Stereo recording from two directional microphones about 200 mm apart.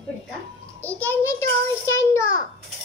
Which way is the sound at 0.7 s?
10° left (ahead or behind).